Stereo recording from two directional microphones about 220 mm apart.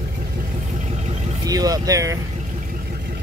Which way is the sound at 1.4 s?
15° right (ahead or behind).